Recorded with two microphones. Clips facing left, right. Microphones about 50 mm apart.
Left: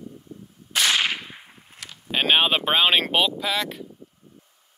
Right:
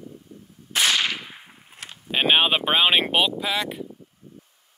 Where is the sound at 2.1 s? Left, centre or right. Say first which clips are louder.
Even; centre.